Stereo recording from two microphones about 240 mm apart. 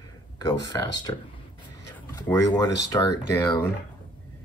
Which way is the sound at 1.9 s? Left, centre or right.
Centre.